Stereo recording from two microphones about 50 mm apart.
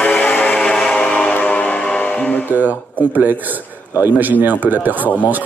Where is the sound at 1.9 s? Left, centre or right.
Left.